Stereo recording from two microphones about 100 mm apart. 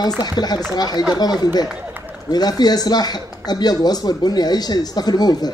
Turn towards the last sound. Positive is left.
turn(degrees=40)  # may be behind; listen again after turning